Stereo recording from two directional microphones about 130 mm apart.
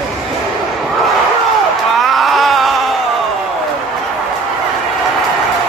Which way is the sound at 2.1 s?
Centre (ahead or behind).